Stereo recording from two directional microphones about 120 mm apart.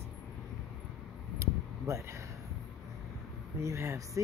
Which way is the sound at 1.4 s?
25° right (ahead or behind).